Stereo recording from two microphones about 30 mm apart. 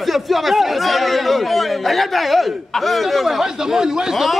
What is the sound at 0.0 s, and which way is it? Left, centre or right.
A man's voice, centre.